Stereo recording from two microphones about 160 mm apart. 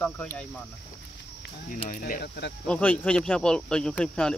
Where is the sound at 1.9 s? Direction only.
60° left (ahead or behind); by 2.5 s 90° left.